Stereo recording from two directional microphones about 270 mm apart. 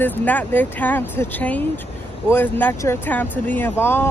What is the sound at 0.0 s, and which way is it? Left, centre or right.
Speech, centre.